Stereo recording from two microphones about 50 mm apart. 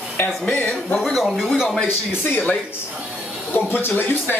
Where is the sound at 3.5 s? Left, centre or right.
Left.